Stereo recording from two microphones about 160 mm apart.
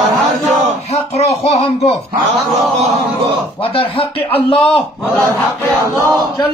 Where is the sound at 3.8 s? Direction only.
35° left (ahead or behind).